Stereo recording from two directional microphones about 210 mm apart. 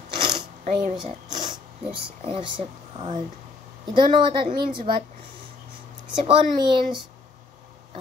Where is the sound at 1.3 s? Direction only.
20° right (ahead or behind).